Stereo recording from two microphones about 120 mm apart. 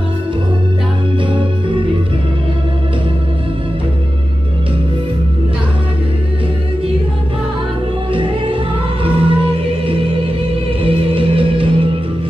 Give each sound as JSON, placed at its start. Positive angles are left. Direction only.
{"t": 8.1, "sound": "music", "side_deg": -45}